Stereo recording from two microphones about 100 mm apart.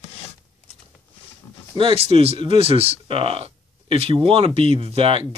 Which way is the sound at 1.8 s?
70° right (ahead or behind).